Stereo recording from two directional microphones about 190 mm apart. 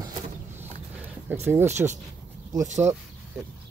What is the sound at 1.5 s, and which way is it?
Speech, 15° right (ahead or behind).